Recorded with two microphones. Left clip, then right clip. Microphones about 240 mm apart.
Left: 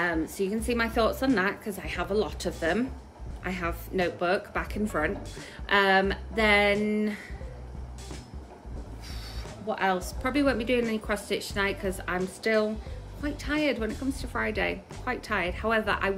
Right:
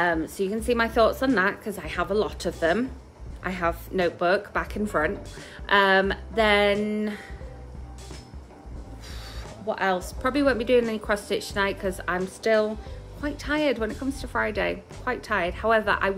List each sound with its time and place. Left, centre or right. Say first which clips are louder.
0.0 s a woman's voice: right 4 dB; centre
9.7 s a woman's voice: right 2 dB; centre
13.8 s speech: right 2 dB; centre
14.1 s a woman's voice: right 6 dB; centre